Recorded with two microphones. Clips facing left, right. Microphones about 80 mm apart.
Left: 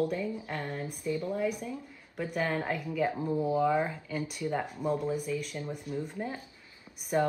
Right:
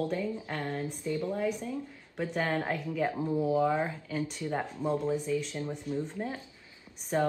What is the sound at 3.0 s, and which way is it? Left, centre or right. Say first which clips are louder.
Speech: even; centre.